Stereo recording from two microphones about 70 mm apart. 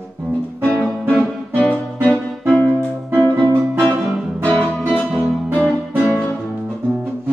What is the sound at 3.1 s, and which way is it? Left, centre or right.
Music, left.